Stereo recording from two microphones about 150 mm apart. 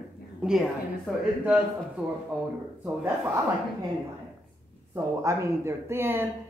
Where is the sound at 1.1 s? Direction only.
10° left (ahead or behind).